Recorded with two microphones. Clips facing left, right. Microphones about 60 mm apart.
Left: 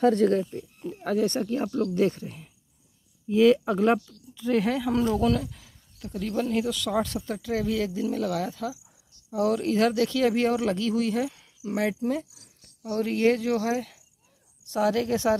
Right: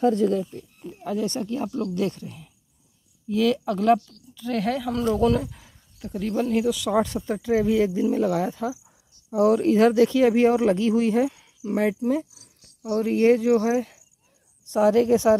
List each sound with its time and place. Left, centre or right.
0.0 s speech: left
1.2 s speech: left; by 4.9 s centre
5.1 s speech: centre
5.4 s a sound: right
6.0 s speech: centre; by 11.3 s right
11.3 s cricket: centre
13.0 s speech: centre